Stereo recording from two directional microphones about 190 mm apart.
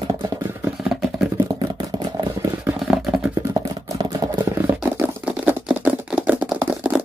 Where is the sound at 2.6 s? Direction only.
5° right (ahead or behind).